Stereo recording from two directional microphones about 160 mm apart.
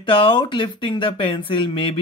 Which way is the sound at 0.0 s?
35° left (ahead or behind).